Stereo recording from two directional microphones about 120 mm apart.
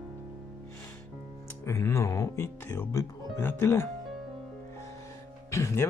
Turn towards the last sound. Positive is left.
turn(degrees=25)  # may be behind; listen again after turning